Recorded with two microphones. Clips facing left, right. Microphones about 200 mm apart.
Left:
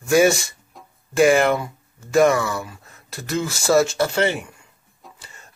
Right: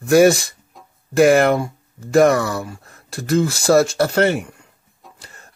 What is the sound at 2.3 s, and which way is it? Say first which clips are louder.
Speech: right 3 dB; 40° right (ahead or behind).